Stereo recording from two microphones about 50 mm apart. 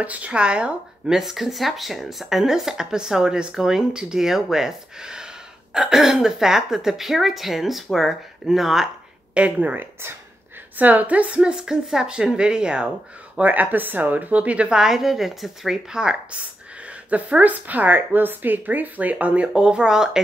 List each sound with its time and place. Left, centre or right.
0.0 s speech: right
1.1 s speech: centre
9.3 s speech: right
10.8 s speech: right
11.5 s speech: centre
13.4 s a woman's voice: right
14.8 s speech: centre
17.1 s a woman's voice: right; by 20.2 s centre